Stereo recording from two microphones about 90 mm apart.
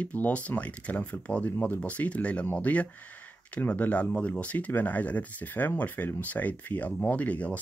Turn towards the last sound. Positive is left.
turn(degrees=15)  # may be behind; listen again after turning